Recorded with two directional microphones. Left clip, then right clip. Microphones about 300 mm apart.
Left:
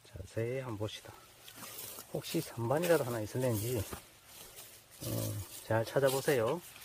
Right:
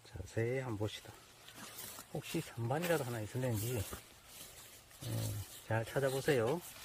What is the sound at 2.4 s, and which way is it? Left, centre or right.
Speech, centre.